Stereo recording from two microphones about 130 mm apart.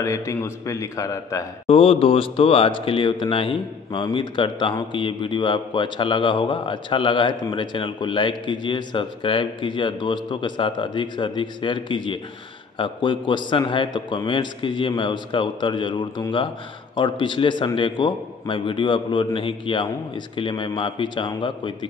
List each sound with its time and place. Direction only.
0.0 s a man's voice: 25° left (ahead or behind)
1.7 s speech: 45° left (ahead or behind)